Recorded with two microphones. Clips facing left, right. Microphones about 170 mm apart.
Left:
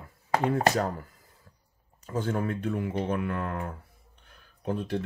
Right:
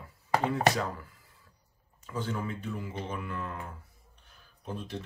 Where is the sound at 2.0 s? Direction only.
45° left (ahead or behind); by 3.7 s 65° left (ahead or behind).